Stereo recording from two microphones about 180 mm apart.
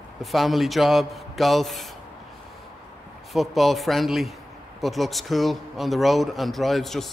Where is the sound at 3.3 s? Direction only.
Centre (ahead or behind).